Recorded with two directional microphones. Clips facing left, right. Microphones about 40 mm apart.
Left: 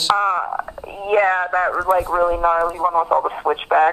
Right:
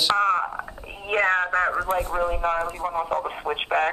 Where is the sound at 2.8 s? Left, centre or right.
Centre.